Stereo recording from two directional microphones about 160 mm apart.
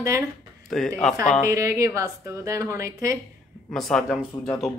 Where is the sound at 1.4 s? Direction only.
20° right (ahead or behind).